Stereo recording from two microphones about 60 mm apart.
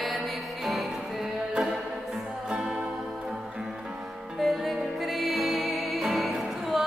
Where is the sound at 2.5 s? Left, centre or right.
Centre.